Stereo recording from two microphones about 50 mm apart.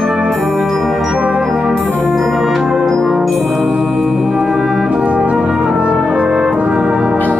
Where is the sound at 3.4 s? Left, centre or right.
Centre.